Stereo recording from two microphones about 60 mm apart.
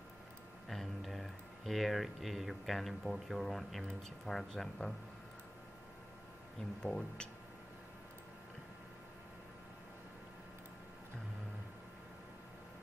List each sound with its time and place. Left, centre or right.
0.7 s speech: centre
6.8 s speech: centre